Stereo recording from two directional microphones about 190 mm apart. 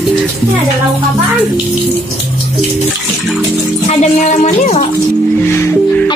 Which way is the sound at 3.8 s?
35° left (ahead or behind).